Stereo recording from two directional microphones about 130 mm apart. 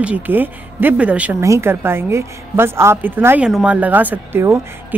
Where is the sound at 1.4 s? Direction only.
20° right (ahead or behind).